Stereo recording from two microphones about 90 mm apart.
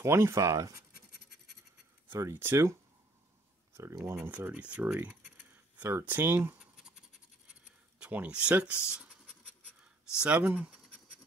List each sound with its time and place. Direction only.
0.0 s speech: 30° right (ahead or behind)
2.0 s speech: 30° right (ahead or behind)
4.0 s speech: 25° right (ahead or behind)
8.0 s speech: 15° right (ahead or behind)
10.2 s speech: 15° right (ahead or behind)